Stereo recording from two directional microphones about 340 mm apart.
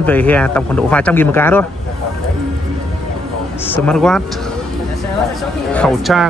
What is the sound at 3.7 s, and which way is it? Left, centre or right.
Speech, centre.